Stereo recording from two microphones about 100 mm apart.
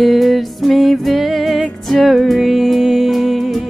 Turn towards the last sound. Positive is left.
turn(degrees=0)  # may be behind; listen again after turning